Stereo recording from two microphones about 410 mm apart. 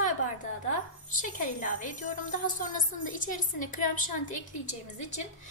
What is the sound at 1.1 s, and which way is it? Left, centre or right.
A woman's voice, centre.